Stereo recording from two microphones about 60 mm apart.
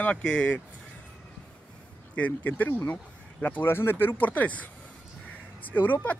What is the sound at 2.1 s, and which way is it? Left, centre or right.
Speech, left.